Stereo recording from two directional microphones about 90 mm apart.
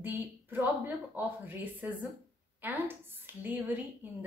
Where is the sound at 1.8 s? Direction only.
20° right (ahead or behind).